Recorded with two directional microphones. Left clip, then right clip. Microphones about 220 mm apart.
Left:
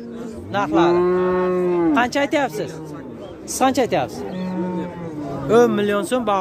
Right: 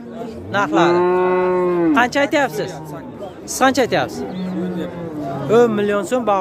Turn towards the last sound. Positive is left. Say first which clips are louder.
# right 2 dB
turn(degrees=10)  # may be behind; listen again after turning